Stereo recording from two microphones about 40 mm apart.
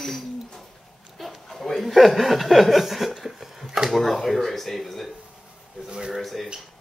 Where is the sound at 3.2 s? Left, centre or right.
Centre.